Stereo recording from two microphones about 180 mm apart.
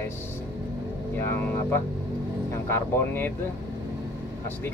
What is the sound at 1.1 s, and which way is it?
Speech, 10° left (ahead or behind).